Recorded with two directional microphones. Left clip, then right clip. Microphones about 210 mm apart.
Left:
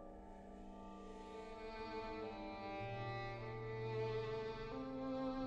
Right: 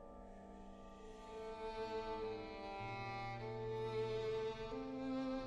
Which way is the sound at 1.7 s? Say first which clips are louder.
Right 3 dB; 45° right (ahead or behind).